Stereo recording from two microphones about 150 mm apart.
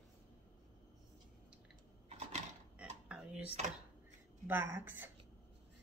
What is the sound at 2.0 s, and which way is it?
Coin, 45° right (ahead or behind).